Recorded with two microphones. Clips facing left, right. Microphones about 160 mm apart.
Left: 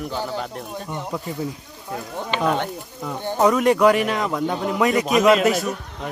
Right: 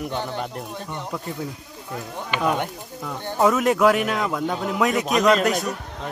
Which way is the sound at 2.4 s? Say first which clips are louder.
Left 1 dB; 10° right (ahead or behind).